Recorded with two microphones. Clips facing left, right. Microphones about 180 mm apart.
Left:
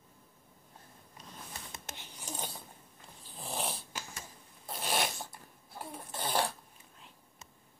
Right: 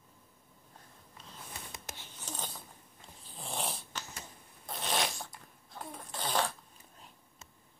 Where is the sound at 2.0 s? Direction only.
10° left (ahead or behind).